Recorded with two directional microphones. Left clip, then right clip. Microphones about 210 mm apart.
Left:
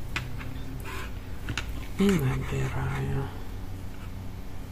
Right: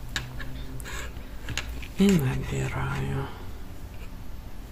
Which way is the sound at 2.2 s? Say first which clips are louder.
Even; 15° right (ahead or behind).